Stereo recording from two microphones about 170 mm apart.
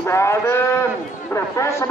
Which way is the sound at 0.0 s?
15° left (ahead or behind).